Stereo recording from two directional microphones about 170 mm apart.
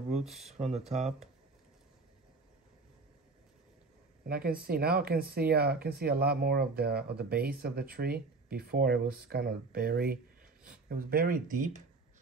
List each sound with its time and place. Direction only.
0.1 s speech: centre (ahead or behind)
0.6 s speech: 40° right (ahead or behind)
4.3 s speech: 60° right (ahead or behind)